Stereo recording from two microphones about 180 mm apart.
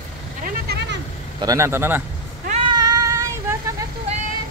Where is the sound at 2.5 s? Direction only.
30° right (ahead or behind).